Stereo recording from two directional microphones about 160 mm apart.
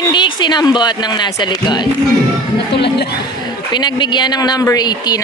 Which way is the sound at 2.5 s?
90° left.